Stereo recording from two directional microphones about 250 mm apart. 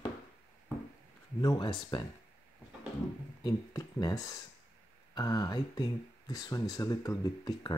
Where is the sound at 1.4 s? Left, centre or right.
Centre.